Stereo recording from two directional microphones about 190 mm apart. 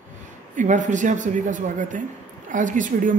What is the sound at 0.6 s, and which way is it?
Speech, 40° right (ahead or behind).